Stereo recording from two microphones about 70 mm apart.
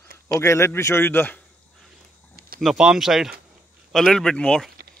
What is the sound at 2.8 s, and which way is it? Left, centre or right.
Speech, centre.